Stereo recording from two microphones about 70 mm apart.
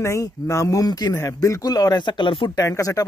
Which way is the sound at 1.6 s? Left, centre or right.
Left.